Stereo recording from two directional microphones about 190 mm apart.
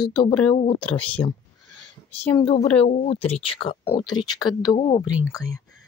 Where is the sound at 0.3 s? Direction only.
5° left (ahead or behind).